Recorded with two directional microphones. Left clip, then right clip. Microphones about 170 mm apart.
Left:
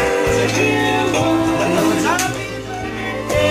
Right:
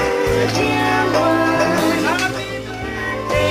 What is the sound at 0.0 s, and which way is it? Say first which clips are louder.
Music: left 1 dB; 30° right (ahead or behind).